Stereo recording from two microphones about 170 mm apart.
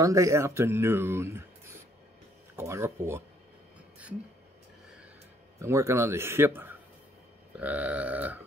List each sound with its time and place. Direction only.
0.0 s speech: 20° right (ahead or behind)
5.6 s speech: 15° right (ahead or behind)